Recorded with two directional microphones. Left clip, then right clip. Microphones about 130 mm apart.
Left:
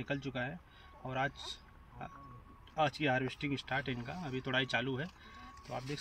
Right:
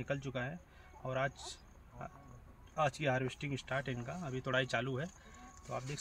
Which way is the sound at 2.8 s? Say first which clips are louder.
Left 2 dB; 35° right (ahead or behind).